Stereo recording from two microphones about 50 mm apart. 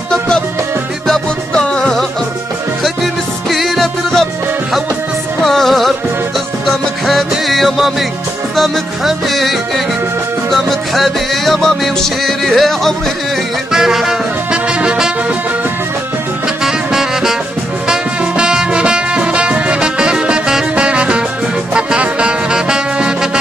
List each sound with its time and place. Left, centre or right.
1.0 s music: centre
2.8 s music: centre
5.4 s music: centre
13.7 s music: centre
14.7 s brass instrument: right
16.6 s music: centre